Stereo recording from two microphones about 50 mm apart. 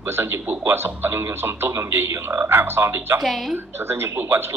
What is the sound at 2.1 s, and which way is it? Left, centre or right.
A man's voice, right.